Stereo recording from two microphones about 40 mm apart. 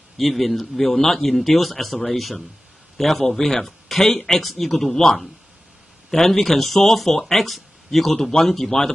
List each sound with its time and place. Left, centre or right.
0.2 s speech: centre